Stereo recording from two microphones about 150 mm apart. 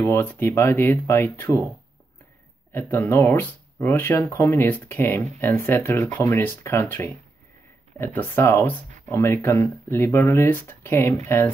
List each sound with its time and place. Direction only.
0.0 s speech: 15° left (ahead or behind)
2.7 s speech: 15° left (ahead or behind)